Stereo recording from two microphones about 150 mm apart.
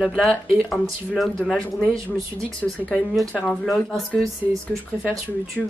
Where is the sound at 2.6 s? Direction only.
10° left (ahead or behind).